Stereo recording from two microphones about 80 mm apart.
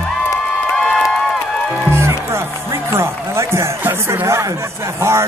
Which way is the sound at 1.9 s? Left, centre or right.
Right.